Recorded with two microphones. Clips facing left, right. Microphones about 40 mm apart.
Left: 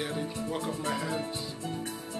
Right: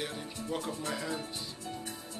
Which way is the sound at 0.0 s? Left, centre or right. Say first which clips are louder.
Left 5 dB; centre.